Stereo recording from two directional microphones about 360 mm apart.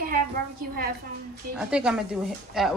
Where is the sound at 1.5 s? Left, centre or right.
Centre.